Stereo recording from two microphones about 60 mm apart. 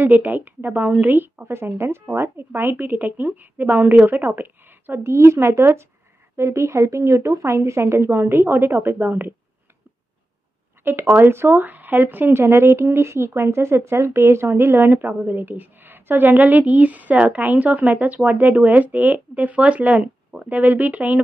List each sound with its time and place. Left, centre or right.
0.0 s a woman's voice: right
10.8 s speech: right
12.3 s speech: right